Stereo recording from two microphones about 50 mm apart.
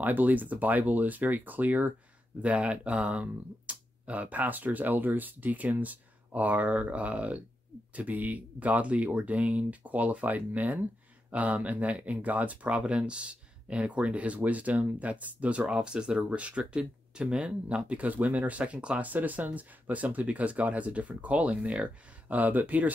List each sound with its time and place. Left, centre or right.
0.0 s speech: right
15.6 s speech: centre; by 22.9 s right